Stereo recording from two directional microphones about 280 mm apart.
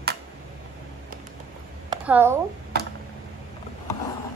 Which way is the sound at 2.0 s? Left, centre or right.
Centre.